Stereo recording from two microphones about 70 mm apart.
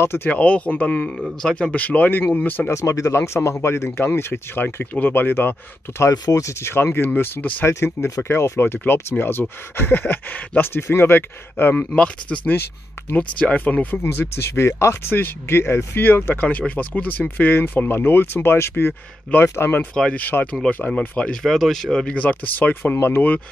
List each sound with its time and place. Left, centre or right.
0.0 s speech: left
0.3 s speech: left
2.7 s speech: left
6.3 s speech: left
7.6 s speech: left
11.9 s speech: centre
14.0 s speech: left
15.1 s speech: left
19.9 s speech: centre
21.3 s speech: centre; by 23.2 s left